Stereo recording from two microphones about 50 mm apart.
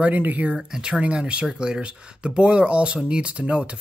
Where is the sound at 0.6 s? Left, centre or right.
Centre.